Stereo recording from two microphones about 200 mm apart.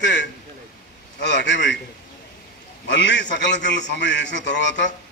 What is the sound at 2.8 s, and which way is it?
A man's voice, 60° left (ahead or behind).